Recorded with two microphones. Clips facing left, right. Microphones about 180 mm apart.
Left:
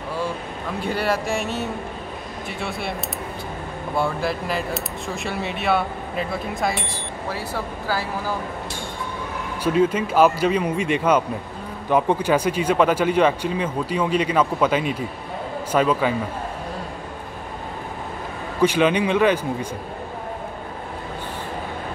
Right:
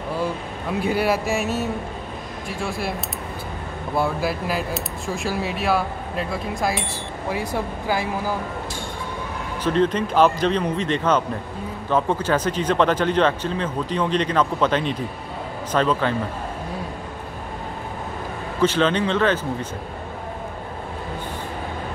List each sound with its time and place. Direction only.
0.8 s speech: 10° right (ahead or behind)
2.6 s speech: centre (ahead or behind)
3.9 s speech: 5° right (ahead or behind)
7.2 s speech: 15° right (ahead or behind)
9.6 s speech: 10° left (ahead or behind)
18.6 s speech: 10° left (ahead or behind)